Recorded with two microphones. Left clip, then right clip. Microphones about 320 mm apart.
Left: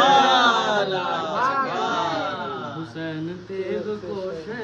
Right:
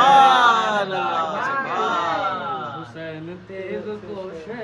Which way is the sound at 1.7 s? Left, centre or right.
Centre.